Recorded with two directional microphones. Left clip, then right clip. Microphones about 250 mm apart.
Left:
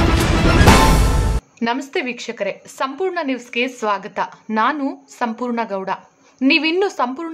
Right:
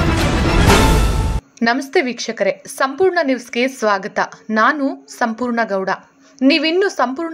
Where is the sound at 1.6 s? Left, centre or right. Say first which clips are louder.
Right 5 dB; centre.